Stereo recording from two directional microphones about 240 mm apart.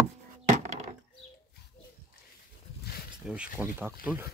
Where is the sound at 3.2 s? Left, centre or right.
Centre.